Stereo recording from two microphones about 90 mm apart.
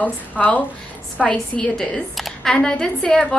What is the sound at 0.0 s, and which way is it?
A woman's voice, 20° left (ahead or behind).